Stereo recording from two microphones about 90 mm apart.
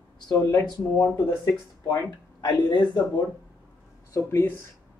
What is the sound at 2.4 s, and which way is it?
Speech, 55° left (ahead or behind).